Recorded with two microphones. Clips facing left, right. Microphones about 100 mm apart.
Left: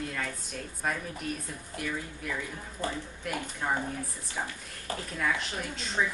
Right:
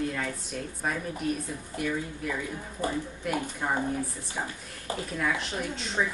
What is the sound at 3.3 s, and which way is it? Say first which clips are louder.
Speech: right 2 dB; 5° right (ahead or behind).